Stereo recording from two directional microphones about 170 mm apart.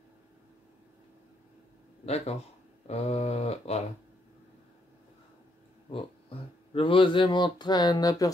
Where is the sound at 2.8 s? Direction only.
40° left (ahead or behind).